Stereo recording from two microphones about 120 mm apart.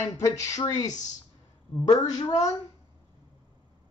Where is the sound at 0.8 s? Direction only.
90° left.